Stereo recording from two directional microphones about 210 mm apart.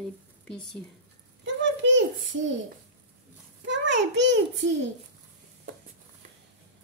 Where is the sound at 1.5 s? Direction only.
60° right (ahead or behind).